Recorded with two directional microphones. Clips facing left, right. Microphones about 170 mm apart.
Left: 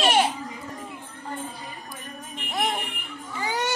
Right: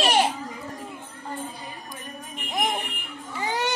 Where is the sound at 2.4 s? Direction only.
15° right (ahead or behind).